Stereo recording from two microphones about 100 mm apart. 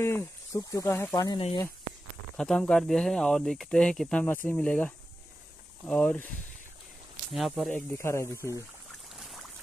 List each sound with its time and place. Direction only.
0.0 s speech: 30° left (ahead or behind)
1.1 s speech: 40° left (ahead or behind)
2.3 s speech: 5° left (ahead or behind)
4.2 s speech: 15° left (ahead or behind)
7.3 s speech: centre (ahead or behind)
7.7 s speech: 25° left (ahead or behind)
9.1 s a sound: centre (ahead or behind)